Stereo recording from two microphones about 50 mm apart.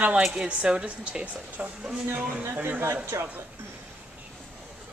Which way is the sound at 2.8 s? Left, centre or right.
Right.